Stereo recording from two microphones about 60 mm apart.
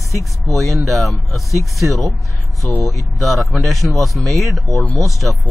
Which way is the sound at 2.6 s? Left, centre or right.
Centre.